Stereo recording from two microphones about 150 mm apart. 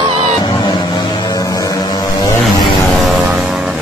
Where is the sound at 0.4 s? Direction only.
30° left (ahead or behind).